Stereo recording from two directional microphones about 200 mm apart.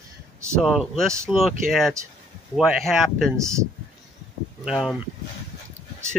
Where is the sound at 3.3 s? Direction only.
15° right (ahead or behind).